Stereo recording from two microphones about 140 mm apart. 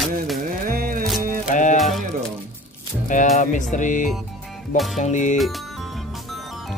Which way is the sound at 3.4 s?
65° left (ahead or behind).